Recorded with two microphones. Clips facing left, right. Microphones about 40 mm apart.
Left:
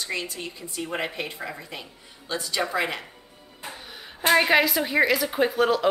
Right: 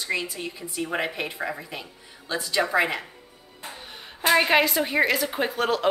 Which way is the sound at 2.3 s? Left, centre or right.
Centre.